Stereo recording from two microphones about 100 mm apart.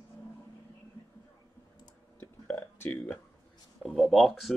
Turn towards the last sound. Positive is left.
turn(degrees=0)  # may be behind; listen again after turning